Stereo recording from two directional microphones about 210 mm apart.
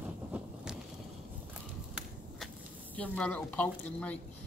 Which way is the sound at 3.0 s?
5° left (ahead or behind).